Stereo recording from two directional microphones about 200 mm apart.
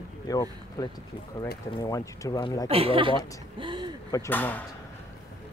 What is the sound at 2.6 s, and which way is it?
Speech, 30° right (ahead or behind).